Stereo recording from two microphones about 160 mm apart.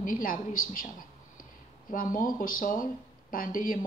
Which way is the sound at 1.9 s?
60° left (ahead or behind).